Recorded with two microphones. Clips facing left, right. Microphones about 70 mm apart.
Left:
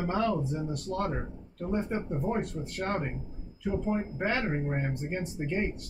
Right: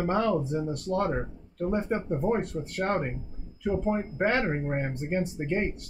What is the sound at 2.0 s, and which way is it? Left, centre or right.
Speech, right.